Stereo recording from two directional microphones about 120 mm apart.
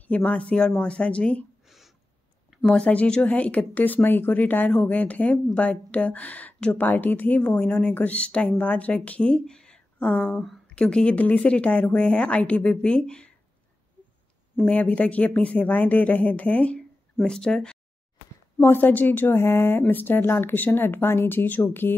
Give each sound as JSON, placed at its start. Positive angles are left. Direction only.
{"t": 0.1, "sound": "speech", "side_deg": 10}
{"t": 2.5, "sound": "speech", "side_deg": 5}
{"t": 14.6, "sound": "speech", "side_deg": 10}
{"t": 18.6, "sound": "a woman's voice", "side_deg": 15}